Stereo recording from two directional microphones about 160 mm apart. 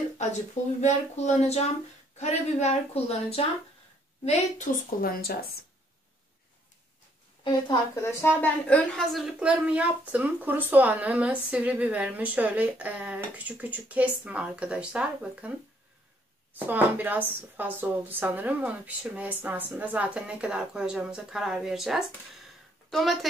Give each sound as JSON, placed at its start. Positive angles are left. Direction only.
{"t": 0.7, "sound": "a woman's voice", "side_deg": 45}
{"t": 5.0, "sound": "speech", "side_deg": 70}
{"t": 7.4, "sound": "a woman's voice", "side_deg": 25}
{"t": 16.5, "sound": "a woman's voice", "side_deg": -10}